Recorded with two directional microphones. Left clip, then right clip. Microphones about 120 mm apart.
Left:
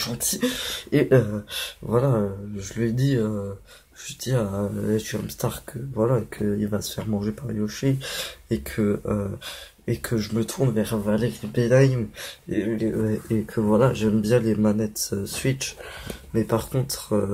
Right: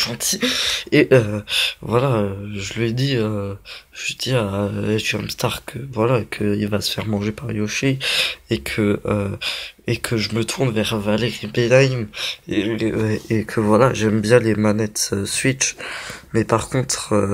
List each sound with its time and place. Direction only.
0.0 s speech: 5° right (ahead or behind)
5.5 s speech: 25° right (ahead or behind)